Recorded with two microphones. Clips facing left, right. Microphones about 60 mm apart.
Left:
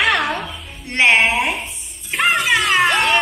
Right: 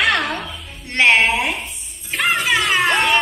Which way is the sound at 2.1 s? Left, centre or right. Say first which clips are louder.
Left 2 dB; centre.